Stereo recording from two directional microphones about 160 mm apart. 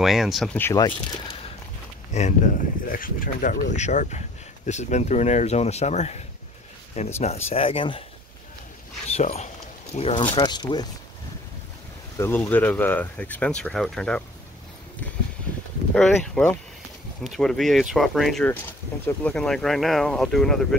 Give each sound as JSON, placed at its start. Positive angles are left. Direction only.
{"t": 0.0, "sound": "speech", "side_deg": 0}
{"t": 0.6, "sound": "speech", "side_deg": 15}
{"t": 2.1, "sound": "speech", "side_deg": 50}
{"t": 3.7, "sound": "speech", "side_deg": 50}
{"t": 9.0, "sound": "speech", "side_deg": 45}
{"t": 12.2, "sound": "speech", "side_deg": 15}
{"t": 15.9, "sound": "speech", "side_deg": 5}